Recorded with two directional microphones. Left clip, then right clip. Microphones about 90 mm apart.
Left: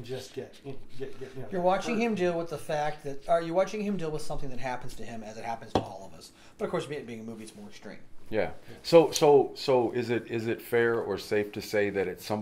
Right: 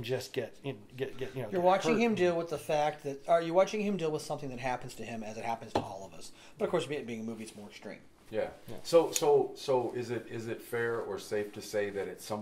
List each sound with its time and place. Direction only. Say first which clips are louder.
1.5 s speech: even; centre (ahead or behind)
8.3 s speech: left 5 dB; 35° left (ahead or behind)